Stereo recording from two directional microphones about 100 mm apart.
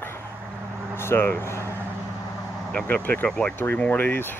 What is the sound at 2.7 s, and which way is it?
Speech, 15° left (ahead or behind).